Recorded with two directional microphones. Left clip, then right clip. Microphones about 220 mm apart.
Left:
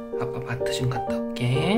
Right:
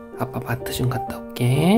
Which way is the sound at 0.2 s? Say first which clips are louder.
Right 2 dB; 40° right (ahead or behind).